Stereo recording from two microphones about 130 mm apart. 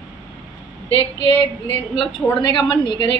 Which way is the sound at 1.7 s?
40° left (ahead or behind).